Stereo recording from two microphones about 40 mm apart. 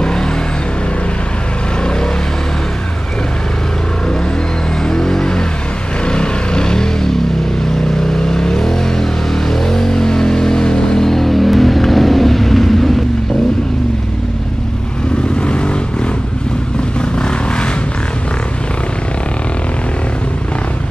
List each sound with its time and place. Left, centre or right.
4.8 s vehicle: centre
8.1 s vehicle: centre
11.1 s vehicle: centre
15.4 s vehicle: left